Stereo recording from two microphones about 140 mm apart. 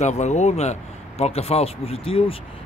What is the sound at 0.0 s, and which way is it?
Speech, 55° left (ahead or behind).